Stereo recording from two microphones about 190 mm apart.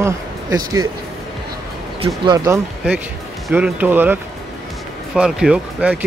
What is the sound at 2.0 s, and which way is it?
Speech, 25° right (ahead or behind).